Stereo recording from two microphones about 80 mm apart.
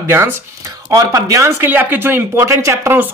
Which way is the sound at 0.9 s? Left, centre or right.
Right.